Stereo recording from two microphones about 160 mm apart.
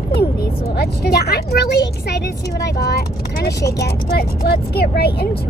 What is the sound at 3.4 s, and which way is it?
Speech, 90° left.